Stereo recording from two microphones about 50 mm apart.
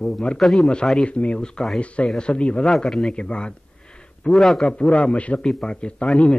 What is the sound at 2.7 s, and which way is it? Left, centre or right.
Speech, centre.